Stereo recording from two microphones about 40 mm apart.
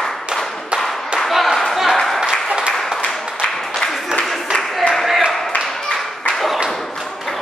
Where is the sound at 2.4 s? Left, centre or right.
Right.